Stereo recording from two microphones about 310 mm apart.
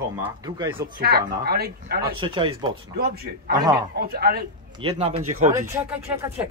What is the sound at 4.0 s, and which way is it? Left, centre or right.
Speech, right.